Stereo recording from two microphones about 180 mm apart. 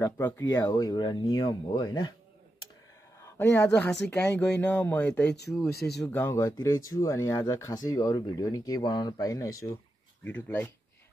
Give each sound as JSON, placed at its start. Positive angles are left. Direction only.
{"t": 0.0, "sound": "speech", "side_deg": 10}
{"t": 3.2, "sound": "speech", "side_deg": 10}